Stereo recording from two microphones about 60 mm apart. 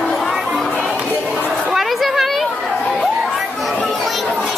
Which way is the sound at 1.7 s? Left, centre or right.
Centre.